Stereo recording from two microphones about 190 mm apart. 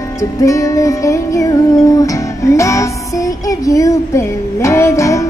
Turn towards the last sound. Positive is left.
turn(degrees=15)  # may be behind; listen again after turning